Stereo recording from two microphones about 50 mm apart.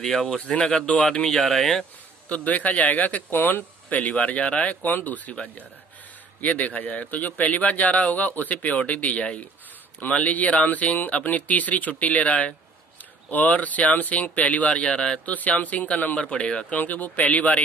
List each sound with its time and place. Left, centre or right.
0.5 s speech: centre
1.4 s speech: centre
2.2 s a man's voice: left
3.3 s speech: left
3.9 s a man's voice: left
6.4 s a man's voice: left
15.2 s a man's voice: left
16.2 s speech: left
16.7 s a man's voice: left